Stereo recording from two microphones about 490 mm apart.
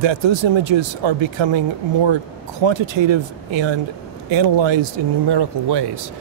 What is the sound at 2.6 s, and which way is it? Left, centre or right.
Speech, right.